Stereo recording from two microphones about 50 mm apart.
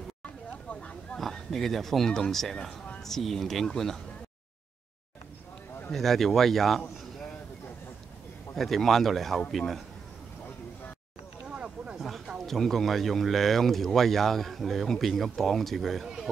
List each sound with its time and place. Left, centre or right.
0.7 s speech: centre
5.9 s speech: centre
8.5 s speech: centre
11.4 s a sound: centre
12.4 s speech: centre